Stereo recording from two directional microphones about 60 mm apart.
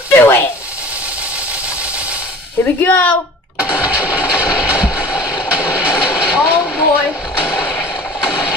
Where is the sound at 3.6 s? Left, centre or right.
Centre.